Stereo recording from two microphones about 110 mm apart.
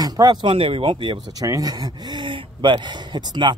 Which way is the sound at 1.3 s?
35° right (ahead or behind).